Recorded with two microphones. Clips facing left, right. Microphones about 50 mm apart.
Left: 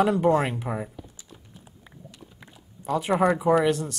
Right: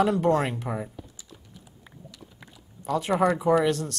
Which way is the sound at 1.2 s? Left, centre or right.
Left.